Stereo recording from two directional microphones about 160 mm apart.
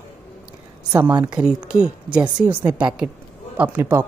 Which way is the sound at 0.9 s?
20° right (ahead or behind).